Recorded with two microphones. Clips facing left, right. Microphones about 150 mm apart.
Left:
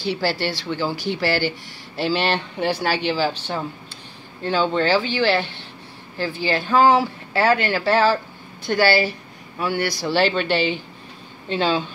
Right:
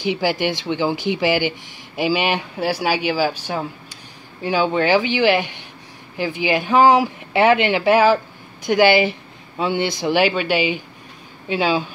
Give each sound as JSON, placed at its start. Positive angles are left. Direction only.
{"t": 0.0, "sound": "speech", "side_deg": -15}